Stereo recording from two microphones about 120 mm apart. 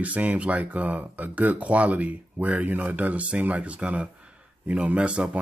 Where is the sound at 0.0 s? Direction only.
10° right (ahead or behind).